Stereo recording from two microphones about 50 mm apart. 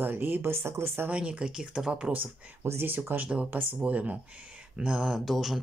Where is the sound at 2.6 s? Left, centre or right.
Right.